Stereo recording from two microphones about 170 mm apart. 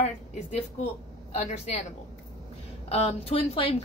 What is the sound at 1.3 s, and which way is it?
Speech, 40° left (ahead or behind).